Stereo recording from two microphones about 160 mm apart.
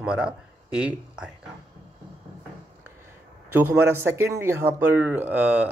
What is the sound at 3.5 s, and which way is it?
Speech, 15° right (ahead or behind).